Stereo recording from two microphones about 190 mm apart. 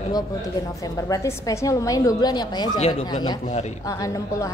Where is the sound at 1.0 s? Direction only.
15° left (ahead or behind).